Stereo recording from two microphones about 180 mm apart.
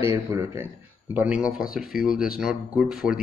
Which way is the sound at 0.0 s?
15° right (ahead or behind).